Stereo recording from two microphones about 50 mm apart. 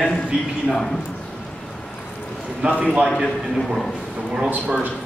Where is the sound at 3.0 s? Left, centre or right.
Centre.